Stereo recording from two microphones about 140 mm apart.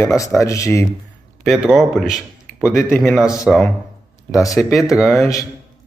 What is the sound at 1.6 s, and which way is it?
A man's voice, 5° right (ahead or behind).